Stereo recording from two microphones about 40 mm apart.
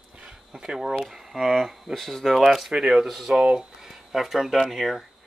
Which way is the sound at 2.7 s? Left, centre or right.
Centre.